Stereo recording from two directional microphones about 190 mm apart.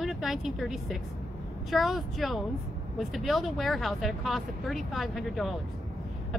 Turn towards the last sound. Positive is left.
turn(degrees=0)  # may be behind; listen again after turning